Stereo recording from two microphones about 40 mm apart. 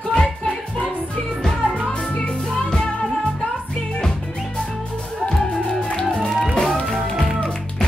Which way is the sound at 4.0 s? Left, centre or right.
Centre.